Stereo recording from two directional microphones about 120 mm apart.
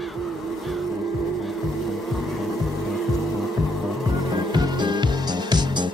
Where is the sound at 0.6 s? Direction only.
Centre (ahead or behind).